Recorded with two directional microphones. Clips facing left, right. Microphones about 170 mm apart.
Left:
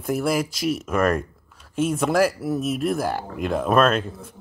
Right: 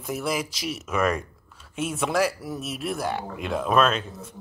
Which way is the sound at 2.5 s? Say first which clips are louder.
Left 8 dB; 50° left (ahead or behind).